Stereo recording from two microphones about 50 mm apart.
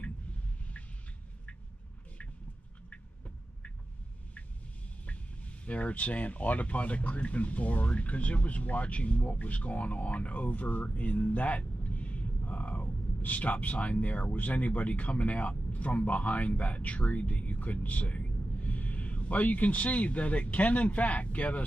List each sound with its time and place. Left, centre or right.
5.0 s speech: left